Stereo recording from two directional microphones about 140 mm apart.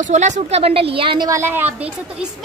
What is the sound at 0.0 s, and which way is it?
A woman's voice, 55° right (ahead or behind).